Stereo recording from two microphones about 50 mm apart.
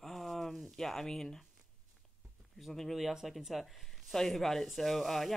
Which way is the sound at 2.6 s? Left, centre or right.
Centre.